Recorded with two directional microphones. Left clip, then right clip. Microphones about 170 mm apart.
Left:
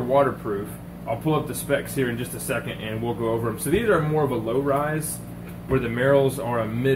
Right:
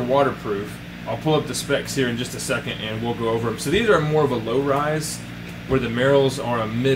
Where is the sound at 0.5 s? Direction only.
Centre (ahead or behind).